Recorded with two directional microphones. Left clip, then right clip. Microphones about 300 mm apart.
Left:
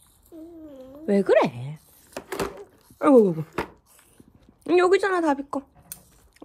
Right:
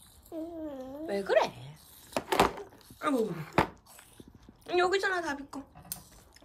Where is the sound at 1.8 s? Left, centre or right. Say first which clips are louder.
Right 5 dB; centre.